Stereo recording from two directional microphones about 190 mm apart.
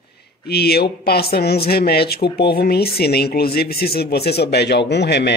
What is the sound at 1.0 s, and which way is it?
Speech, 55° left (ahead or behind).